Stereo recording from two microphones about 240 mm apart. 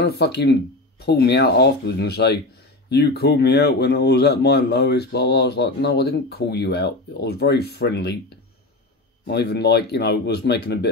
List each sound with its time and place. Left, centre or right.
0.0 s speech: left
9.2 s speech: left